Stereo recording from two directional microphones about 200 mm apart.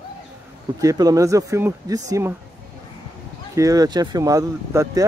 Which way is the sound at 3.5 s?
15° right (ahead or behind).